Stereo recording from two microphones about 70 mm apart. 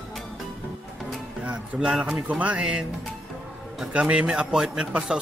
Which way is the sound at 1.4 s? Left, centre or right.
Centre.